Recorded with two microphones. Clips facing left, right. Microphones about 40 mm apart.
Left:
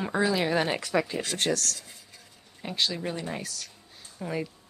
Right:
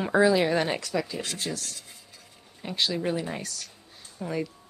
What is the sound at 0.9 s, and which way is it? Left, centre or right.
Speech, left.